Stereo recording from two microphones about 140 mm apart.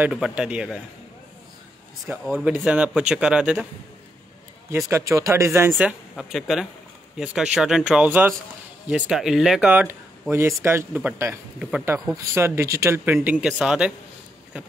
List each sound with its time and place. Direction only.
0.0 s speech: 10° right (ahead or behind)
2.3 s speech: 10° right (ahead or behind)
4.7 s speech: 20° right (ahead or behind)
5.8 s speech: 10° right (ahead or behind)